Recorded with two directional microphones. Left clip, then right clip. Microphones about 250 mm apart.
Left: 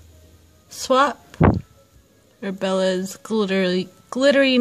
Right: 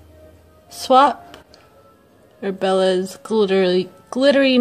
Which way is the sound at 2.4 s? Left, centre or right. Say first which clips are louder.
Right 4 dB; left.